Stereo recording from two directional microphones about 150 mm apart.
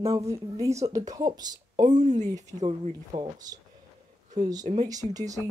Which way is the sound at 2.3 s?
25° right (ahead or behind).